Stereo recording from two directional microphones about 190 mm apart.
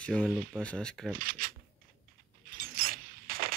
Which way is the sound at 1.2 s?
50° right (ahead or behind).